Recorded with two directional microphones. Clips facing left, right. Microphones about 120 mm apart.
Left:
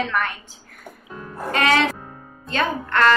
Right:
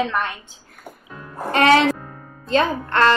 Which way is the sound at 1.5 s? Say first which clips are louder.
Right 4 dB; 30° right (ahead or behind).